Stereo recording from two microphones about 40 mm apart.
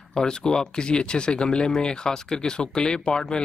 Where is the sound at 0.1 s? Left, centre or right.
Centre.